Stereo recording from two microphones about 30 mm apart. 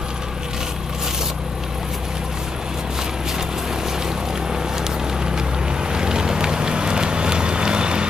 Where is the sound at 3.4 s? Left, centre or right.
Centre.